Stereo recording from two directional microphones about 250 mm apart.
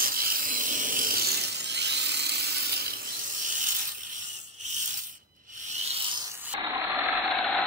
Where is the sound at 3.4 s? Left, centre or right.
Right.